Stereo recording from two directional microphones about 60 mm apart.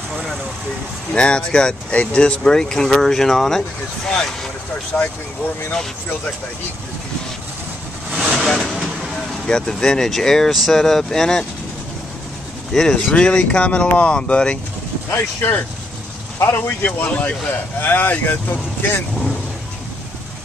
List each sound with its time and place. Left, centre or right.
1.1 s speech: centre
4.9 s speech: centre
8.1 s vehicle: centre
8.4 s vehicle: centre
9.5 s speech: centre
12.7 s speech: centre
13.1 s speech: centre
15.0 s speech: left